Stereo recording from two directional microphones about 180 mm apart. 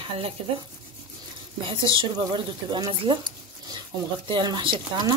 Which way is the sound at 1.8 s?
25° right (ahead or behind).